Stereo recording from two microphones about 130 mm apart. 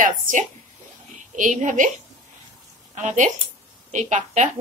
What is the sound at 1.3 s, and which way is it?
Speech, 70° right (ahead or behind).